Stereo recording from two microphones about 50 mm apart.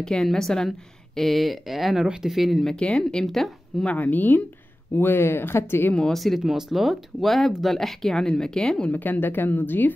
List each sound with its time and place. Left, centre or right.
0.0 s speech: centre
2.6 s speech: centre
3.8 s speech: left
4.9 s speech: left
6.1 s speech: centre
8.9 s speech: left